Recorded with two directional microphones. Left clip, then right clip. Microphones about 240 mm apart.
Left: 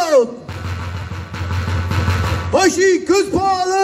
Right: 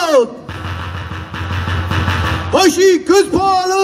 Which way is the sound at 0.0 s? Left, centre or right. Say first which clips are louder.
Right 1 dB; centre.